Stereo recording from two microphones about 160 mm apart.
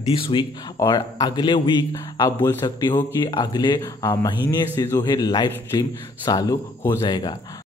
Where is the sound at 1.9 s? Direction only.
20° left (ahead or behind).